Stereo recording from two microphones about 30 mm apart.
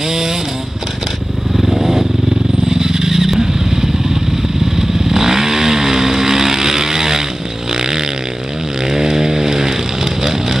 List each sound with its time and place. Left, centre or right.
0.1 s vehicle: centre
1.6 s motorcycle: centre
2.7 s motorcycle: right
4.7 s vehicle: centre
8.8 s vehicle: centre